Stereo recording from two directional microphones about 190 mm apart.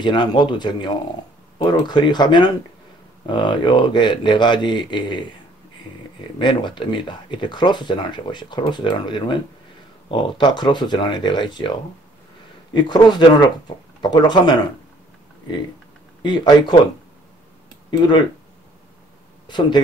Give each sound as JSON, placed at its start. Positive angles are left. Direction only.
{"t": 0.0, "sound": "speech", "side_deg": 25}
{"t": 6.3, "sound": "speech", "side_deg": 25}
{"t": 12.7, "sound": "speech", "side_deg": 25}
{"t": 16.2, "sound": "speech", "side_deg": 25}
{"t": 18.0, "sound": "speech", "side_deg": 25}
{"t": 19.4, "sound": "speech", "side_deg": 25}